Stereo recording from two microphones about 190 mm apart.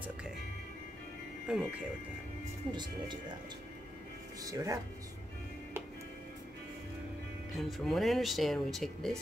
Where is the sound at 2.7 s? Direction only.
25° right (ahead or behind).